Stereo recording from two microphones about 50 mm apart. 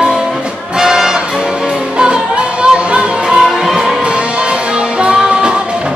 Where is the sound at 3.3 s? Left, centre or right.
Centre.